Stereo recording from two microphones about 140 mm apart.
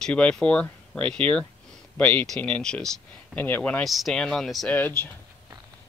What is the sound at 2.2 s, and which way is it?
Speech, 5° left (ahead or behind).